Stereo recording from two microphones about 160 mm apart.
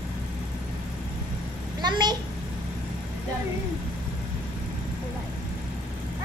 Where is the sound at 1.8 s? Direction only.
25° right (ahead or behind).